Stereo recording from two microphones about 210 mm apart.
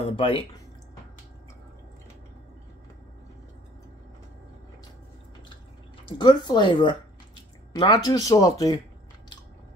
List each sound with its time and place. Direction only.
0.0 s speech: 25° left (ahead or behind)
6.1 s speech: 20° left (ahead or behind)